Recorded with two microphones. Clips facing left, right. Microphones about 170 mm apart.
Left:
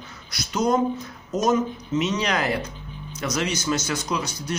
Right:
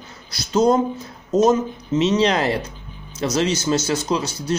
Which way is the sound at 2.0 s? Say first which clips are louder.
Right 7 dB; 30° right (ahead or behind).